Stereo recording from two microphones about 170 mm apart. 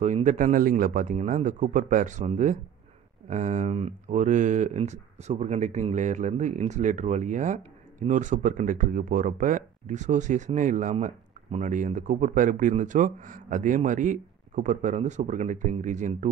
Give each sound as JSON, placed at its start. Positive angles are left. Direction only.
{"t": 0.0, "sound": "speech", "side_deg": -45}